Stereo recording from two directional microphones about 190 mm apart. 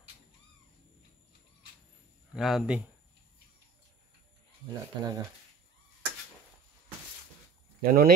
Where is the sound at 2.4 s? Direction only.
Centre (ahead or behind).